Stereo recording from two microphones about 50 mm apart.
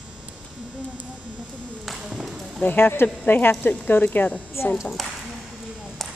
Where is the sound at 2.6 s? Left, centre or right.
Left.